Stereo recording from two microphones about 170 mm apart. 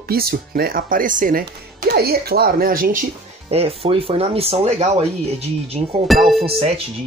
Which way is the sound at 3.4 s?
35° right (ahead or behind).